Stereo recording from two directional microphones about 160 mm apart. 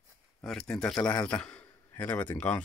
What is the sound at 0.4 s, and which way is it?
A man's voice, 5° left (ahead or behind).